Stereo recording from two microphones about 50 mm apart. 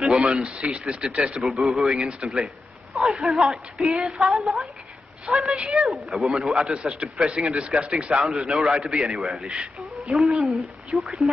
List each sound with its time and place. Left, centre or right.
0.0 s a man's voice: centre
6.7 s a man's voice: centre
8.1 s a woman's voice: centre